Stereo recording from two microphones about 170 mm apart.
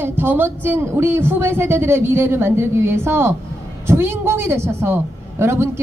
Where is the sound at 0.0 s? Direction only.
10° right (ahead or behind).